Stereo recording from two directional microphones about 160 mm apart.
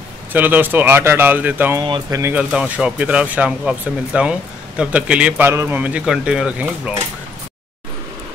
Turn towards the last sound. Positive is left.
turn(degrees=-5)  # may be behind; listen again after turning